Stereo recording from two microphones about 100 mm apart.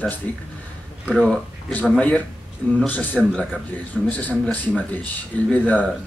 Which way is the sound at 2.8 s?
15° left (ahead or behind).